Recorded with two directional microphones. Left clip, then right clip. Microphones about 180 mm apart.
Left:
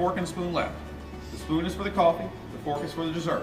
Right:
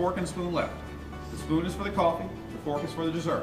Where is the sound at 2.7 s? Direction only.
Centre (ahead or behind).